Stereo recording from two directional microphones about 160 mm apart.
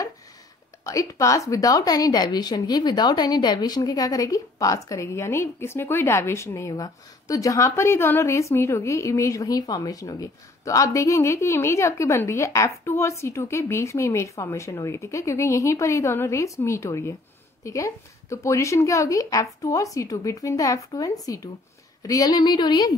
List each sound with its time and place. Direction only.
0.8 s a woman's voice: 20° left (ahead or behind)